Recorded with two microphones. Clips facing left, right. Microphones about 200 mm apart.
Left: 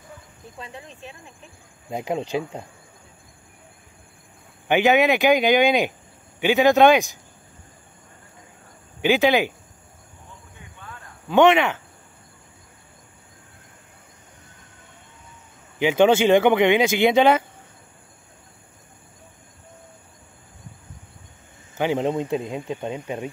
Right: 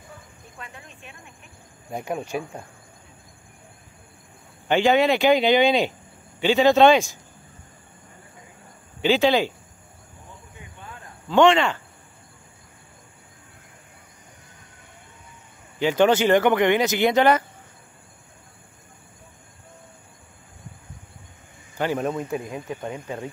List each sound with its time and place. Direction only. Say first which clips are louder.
0.6 s speech: left 4 dB; 30° left (ahead or behind)
4.6 s speech: left 1 dB; 15° left (ahead or behind)
9.0 s speech: left 1 dB; 15° left (ahead or behind)
11.2 s speech: left 1 dB; 20° left (ahead or behind)
15.8 s speech: left 2 dB; 10° left (ahead or behind)
21.7 s speech: left 3 dB; 20° left (ahead or behind)